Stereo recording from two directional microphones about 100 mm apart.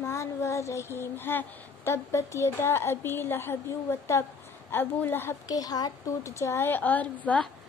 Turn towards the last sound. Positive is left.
turn(degrees=15)  # may be behind; listen again after turning